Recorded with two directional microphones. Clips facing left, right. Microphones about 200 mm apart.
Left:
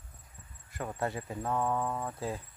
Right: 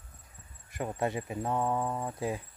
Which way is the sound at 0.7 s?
20° right (ahead or behind).